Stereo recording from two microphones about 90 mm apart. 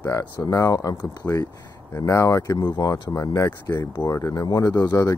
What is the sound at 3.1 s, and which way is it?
Speech, 35° left (ahead or behind).